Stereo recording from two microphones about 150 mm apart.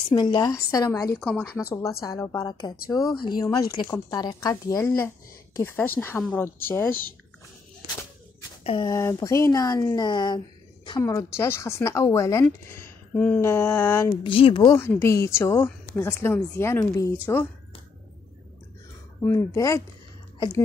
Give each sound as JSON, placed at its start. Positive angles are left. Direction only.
{"t": 0.1, "sound": "speech", "side_deg": 30}
{"t": 8.6, "sound": "speech", "side_deg": 35}
{"t": 8.9, "sound": "speech", "side_deg": 20}
{"t": 14.2, "sound": "speech", "side_deg": 35}
{"t": 14.8, "sound": "speech", "side_deg": 15}
{"t": 19.2, "sound": "speech", "side_deg": 20}